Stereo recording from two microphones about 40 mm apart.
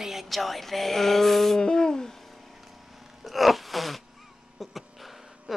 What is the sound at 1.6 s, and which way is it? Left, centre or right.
Speech, centre.